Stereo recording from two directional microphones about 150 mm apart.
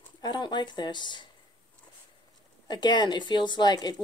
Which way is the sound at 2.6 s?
30° left (ahead or behind).